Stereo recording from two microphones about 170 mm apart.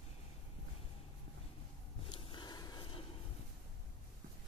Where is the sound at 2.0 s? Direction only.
30° left (ahead or behind).